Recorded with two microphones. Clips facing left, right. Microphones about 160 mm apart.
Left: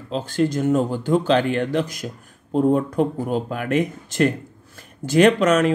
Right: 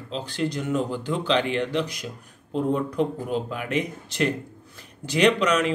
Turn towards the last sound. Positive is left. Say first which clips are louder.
# left 4 dB
turn(degrees=45)  # may be behind; listen again after turning